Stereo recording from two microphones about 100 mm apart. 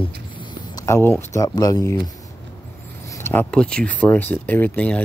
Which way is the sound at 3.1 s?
25° left (ahead or behind).